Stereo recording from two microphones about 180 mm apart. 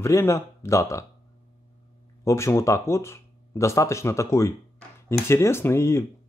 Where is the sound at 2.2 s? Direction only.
15° left (ahead or behind).